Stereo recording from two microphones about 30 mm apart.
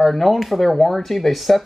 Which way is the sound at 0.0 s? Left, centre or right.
Centre.